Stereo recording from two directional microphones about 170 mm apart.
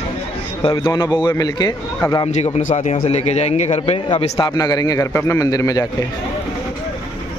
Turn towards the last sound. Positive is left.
turn(degrees=20)  # may be behind; listen again after turning